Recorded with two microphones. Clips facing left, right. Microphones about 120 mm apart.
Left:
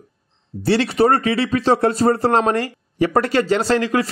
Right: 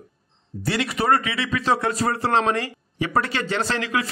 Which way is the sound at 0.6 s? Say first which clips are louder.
Left 8 dB; 30° left (ahead or behind).